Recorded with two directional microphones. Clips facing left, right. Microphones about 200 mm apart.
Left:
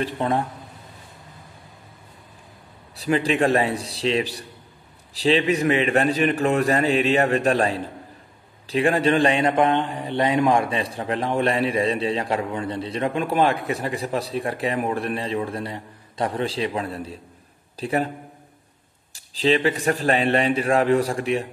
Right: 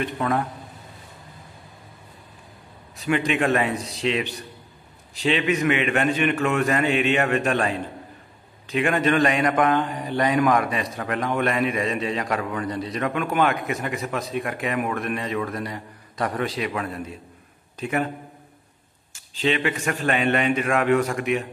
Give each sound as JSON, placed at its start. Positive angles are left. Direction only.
{"t": 0.0, "sound": "a man's voice", "side_deg": 30}
{"t": 3.0, "sound": "a man's voice", "side_deg": 35}
{"t": 19.1, "sound": "a man's voice", "side_deg": 35}